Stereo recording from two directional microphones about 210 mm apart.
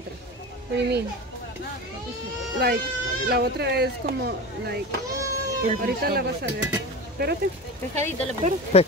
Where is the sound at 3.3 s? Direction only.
50° right (ahead or behind).